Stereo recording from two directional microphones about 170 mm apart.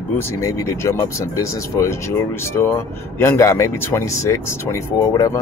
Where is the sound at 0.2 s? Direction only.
15° left (ahead or behind).